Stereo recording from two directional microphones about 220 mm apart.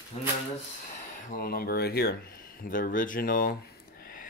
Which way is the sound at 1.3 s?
40° left (ahead or behind).